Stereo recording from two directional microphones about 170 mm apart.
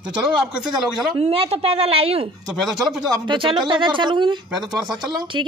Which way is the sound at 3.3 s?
30° right (ahead or behind).